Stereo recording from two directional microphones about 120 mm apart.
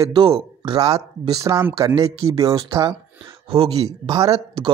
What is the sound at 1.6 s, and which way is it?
Speech, 20° right (ahead or behind).